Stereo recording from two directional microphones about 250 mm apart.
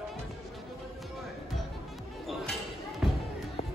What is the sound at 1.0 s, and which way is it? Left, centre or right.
Music, centre.